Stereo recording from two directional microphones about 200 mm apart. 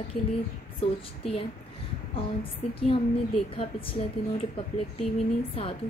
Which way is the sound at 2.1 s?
25° left (ahead or behind).